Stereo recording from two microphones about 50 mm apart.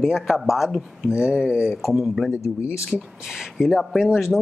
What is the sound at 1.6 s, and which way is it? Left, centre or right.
Speech, centre.